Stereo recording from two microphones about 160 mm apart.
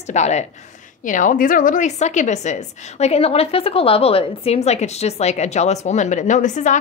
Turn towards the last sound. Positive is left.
turn(degrees=50)  # may be behind; listen again after turning